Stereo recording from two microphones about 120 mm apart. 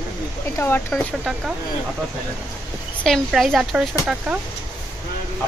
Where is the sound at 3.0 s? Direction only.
Centre (ahead or behind).